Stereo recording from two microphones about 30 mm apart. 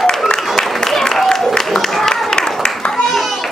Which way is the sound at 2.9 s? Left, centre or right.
Centre.